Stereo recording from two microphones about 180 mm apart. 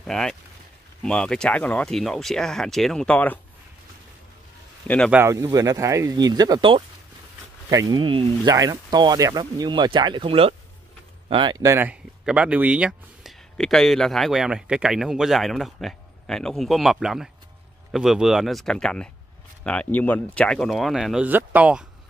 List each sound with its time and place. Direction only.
0.0 s speech: centre (ahead or behind)
4.8 s a man's voice: 5° left (ahead or behind)
5.1 s speech: 15° right (ahead or behind)
11.6 s speech: 15° right (ahead or behind)